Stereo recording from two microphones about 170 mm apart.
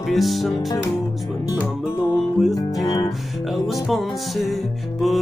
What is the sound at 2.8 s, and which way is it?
Music, 20° left (ahead or behind).